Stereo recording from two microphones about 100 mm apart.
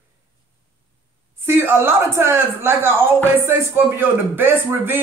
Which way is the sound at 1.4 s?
25° right (ahead or behind).